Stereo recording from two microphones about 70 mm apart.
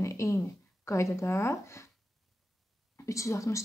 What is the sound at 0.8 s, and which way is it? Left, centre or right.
Speech, left.